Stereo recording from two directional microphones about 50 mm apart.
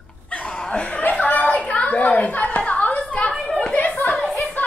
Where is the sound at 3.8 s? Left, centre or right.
Left.